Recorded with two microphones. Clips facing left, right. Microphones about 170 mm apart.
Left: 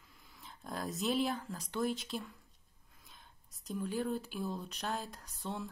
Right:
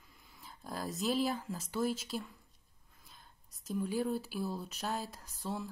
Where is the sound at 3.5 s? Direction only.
Centre (ahead or behind).